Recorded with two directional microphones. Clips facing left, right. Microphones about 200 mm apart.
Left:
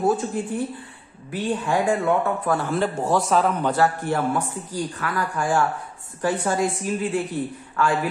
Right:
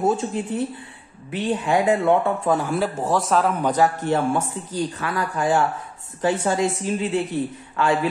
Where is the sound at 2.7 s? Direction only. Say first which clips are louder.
Even; 5° right (ahead or behind).